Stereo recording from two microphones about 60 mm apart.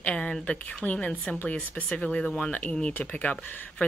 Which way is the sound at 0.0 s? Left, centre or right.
Centre.